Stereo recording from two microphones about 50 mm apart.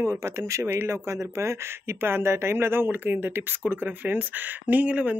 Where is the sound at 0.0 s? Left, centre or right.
Right.